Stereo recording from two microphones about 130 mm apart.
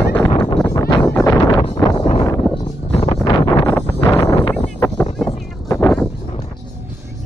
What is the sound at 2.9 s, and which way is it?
Wind noise, 55° left (ahead or behind).